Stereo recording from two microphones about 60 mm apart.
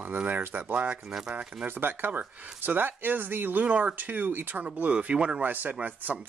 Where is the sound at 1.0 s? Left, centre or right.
Centre.